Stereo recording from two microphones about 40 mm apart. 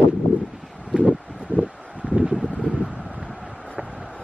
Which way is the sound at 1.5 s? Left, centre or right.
Right.